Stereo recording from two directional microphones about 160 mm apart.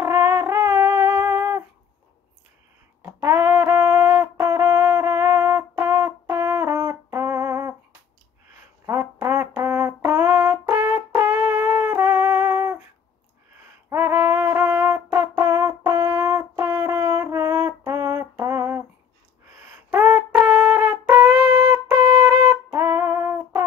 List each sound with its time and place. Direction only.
0.0 s brass instrument: 15° right (ahead or behind)
3.2 s music: 15° right (ahead or behind)
8.8 s brass instrument: 15° right (ahead or behind)
11.1 s music: 15° right (ahead or behind)
13.8 s music: 15° right (ahead or behind)
19.6 s a sound: 15° right (ahead or behind)
22.7 s music: 15° right (ahead or behind)